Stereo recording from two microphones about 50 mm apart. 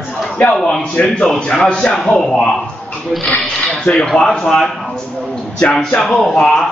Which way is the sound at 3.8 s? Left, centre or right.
Left.